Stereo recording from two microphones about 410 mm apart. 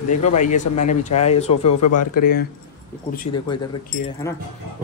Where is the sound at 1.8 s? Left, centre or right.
Left.